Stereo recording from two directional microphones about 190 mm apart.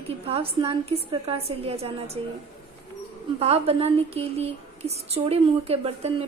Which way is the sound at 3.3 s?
30° right (ahead or behind).